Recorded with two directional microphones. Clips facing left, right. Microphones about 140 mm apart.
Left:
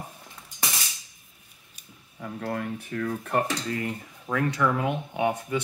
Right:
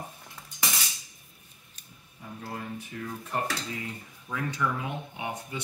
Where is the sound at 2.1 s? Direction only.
60° left (ahead or behind).